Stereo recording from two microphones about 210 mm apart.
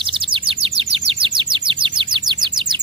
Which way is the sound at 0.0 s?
25° right (ahead or behind).